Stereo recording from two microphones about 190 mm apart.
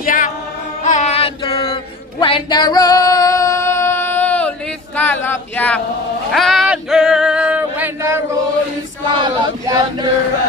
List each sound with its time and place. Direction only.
0.0 s chant: 45° left (ahead or behind)
0.8 s a sound: 40° left (ahead or behind); by 5.8 s 10° left (ahead or behind)
6.3 s male singing: centre (ahead or behind)
9.2 s speech: 25° right (ahead or behind)